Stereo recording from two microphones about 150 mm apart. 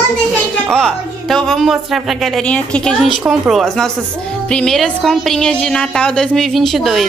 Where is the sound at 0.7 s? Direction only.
5° left (ahead or behind).